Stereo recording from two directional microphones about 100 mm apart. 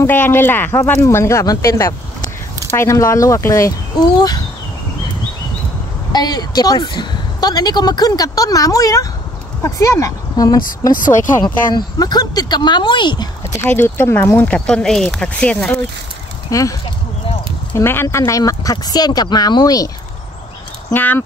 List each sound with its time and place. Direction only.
0.0 s speech: 20° left (ahead or behind); by 4.4 s 40° left (ahead or behind)
6.1 s speech: 45° left (ahead or behind)
13.6 s speech: 25° left (ahead or behind)
16.4 s speech: 35° left (ahead or behind)
17.7 s speech: 25° left (ahead or behind); by 19.9 s 40° left (ahead or behind)
20.9 s speech: 15° left (ahead or behind)